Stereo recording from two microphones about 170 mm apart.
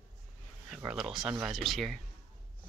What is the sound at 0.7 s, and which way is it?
Speech, 5° right (ahead or behind).